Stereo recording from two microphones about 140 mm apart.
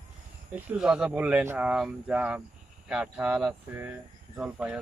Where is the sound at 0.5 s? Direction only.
10° right (ahead or behind).